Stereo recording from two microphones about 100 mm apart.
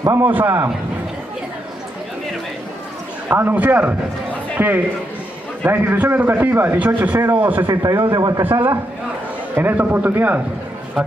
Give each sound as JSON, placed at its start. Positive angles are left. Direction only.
{"t": 0.2, "sound": "a man's voice", "side_deg": -20}
{"t": 3.3, "sound": "a man's voice", "side_deg": -15}
{"t": 7.6, "sound": "a man's voice", "side_deg": -40}
{"t": 8.4, "sound": "a man's voice", "side_deg": -20}